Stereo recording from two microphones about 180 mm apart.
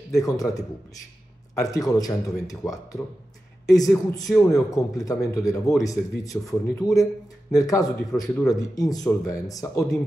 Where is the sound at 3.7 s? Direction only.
20° left (ahead or behind).